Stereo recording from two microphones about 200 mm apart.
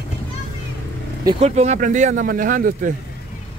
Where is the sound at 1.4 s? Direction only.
35° right (ahead or behind).